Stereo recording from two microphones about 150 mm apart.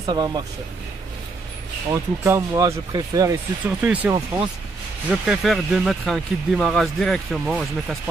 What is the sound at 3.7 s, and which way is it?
Speech, 10° right (ahead or behind).